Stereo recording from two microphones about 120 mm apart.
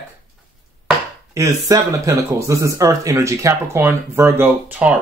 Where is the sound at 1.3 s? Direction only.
25° right (ahead or behind).